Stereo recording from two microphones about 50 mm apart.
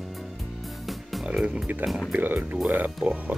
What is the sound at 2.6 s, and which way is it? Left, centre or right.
Speech, right.